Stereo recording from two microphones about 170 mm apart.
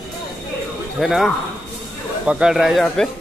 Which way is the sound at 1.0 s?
Centre (ahead or behind).